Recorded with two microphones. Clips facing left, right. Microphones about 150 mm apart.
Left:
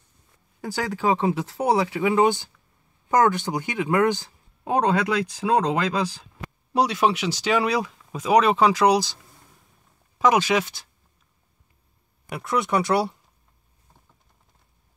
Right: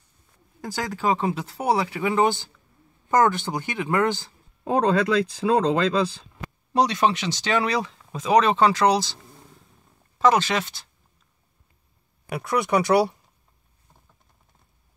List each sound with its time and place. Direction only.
0.6 s speech: 10° left (ahead or behind)
5.3 s speech: 10° left (ahead or behind)
10.1 s speech: 10° left (ahead or behind)
12.3 s speech: centre (ahead or behind)